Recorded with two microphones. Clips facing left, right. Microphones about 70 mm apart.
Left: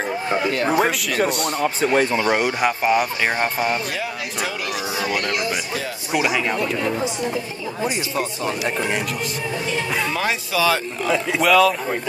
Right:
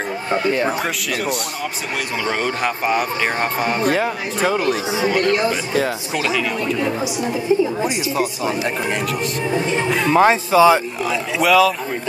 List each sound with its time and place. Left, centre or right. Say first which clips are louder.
0.5 s speech: right 4 dB; centre
0.7 s speech: left 3 dB; centre
2.0 s speech: left 2 dB; left
3.8 s speech: right 8 dB; right
6.1 s speech: left 3 dB; centre
6.8 s speech: right 2 dB; centre
9.5 s music: right 6 dB; right
9.8 s speech: right 5 dB; centre
10.1 s speech: right 9 dB; right
11.4 s speech: right 1 dB; centre